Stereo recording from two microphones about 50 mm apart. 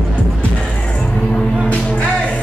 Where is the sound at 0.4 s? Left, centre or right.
Left.